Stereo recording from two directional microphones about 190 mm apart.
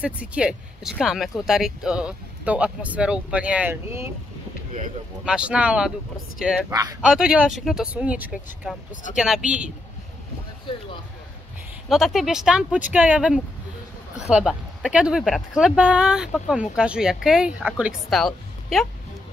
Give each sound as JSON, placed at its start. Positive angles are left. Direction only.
{"t": 0.0, "sound": "a woman's voice", "side_deg": -5}
{"t": 5.2, "sound": "a woman's voice", "side_deg": -5}
{"t": 6.7, "sound": "speech", "side_deg": -20}
{"t": 7.0, "sound": "a woman's voice", "side_deg": -5}
{"t": 10.7, "sound": "speech", "side_deg": 25}
{"t": 11.9, "sound": "a woman's voice", "side_deg": 0}